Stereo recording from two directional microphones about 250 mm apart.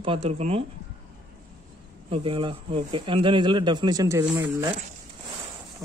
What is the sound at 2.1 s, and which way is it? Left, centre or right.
Speech, right.